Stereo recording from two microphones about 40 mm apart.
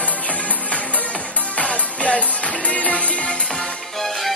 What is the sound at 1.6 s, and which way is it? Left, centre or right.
Music, left.